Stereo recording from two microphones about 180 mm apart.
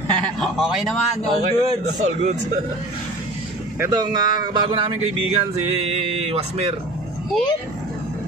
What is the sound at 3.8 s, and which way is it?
Speech, 20° right (ahead or behind).